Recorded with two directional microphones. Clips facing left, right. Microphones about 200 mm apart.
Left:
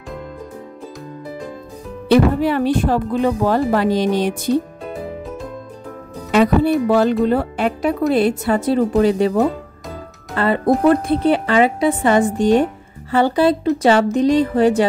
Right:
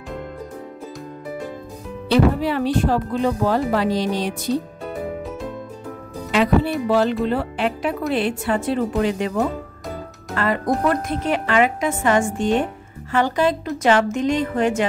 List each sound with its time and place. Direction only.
2.0 s speech: 55° left (ahead or behind)
6.3 s music: 45° left (ahead or behind)
6.9 s a woman's voice: 45° left (ahead or behind)